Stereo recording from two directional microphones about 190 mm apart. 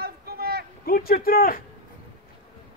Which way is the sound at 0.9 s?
50° left (ahead or behind).